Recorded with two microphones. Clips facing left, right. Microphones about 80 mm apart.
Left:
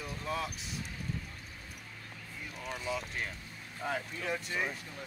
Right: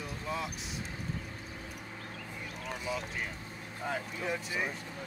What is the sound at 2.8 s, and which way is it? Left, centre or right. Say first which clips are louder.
Speech: even; centre.